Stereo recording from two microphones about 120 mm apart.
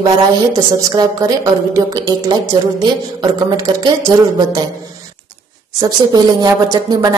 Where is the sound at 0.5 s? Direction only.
30° right (ahead or behind).